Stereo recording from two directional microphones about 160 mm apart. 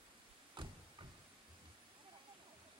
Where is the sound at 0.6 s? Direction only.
30° right (ahead or behind).